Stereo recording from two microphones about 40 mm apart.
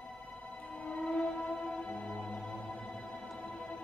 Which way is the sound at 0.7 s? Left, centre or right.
Left.